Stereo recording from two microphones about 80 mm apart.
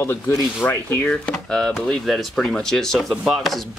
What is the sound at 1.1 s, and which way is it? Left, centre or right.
Speech, centre.